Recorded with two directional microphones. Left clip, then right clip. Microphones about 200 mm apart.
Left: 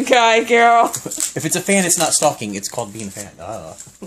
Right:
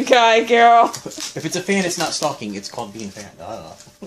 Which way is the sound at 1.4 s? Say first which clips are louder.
Left 3 dB; 50° left (ahead or behind).